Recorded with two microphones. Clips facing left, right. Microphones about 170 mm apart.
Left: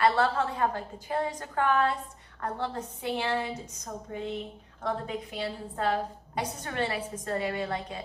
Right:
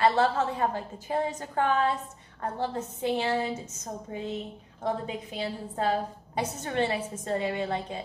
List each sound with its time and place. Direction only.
0.0 s a woman's voice: 25° right (ahead or behind)